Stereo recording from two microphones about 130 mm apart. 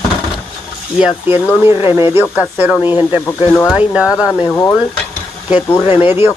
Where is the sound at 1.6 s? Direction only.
20° right (ahead or behind).